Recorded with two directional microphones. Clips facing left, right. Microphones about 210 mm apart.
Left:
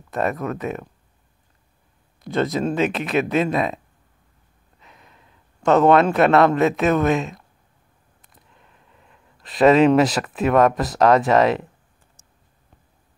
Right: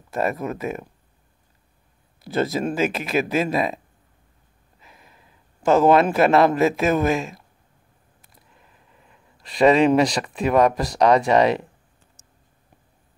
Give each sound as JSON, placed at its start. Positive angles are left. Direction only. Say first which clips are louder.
{"t": 0.1, "sound": "speech", "louder": "left 1 dB", "side_deg": 0}
{"t": 2.2, "sound": "speech", "louder": "left 1 dB", "side_deg": 0}